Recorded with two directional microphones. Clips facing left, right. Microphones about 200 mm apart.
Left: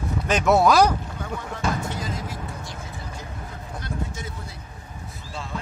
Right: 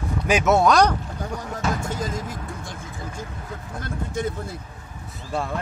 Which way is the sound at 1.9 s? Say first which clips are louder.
Right 3 dB; 45° right (ahead or behind).